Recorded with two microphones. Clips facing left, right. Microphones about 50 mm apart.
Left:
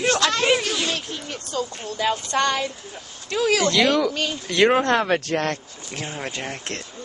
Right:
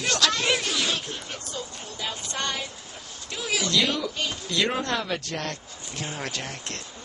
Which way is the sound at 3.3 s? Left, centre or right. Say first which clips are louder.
Left 9 dB; left.